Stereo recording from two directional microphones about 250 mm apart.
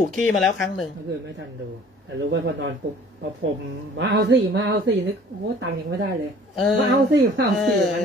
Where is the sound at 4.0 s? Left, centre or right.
Right.